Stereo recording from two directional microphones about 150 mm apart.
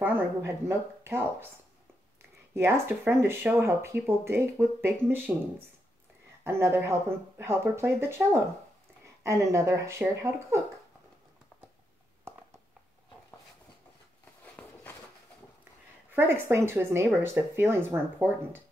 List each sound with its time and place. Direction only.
0.0 s speech: 15° right (ahead or behind)
2.5 s speech: 15° right (ahead or behind)
6.4 s speech: 15° right (ahead or behind)
14.4 s a sound: 10° left (ahead or behind)
16.1 s speech: 15° right (ahead or behind)